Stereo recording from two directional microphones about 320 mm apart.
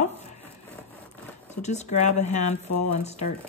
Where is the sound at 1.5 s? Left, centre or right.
Left.